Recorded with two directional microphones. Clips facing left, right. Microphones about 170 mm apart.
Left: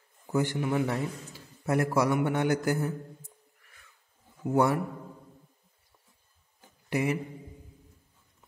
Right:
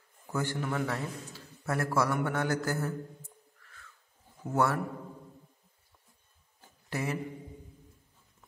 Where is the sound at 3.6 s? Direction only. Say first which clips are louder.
Right 4 dB; 15° left (ahead or behind).